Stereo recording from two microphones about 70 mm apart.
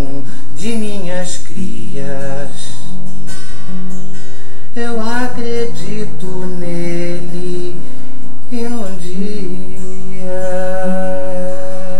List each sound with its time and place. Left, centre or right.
0.6 s speech: centre
0.9 s a sound: centre
1.6 s music: centre
4.7 s music: centre
10.2 s mantra: centre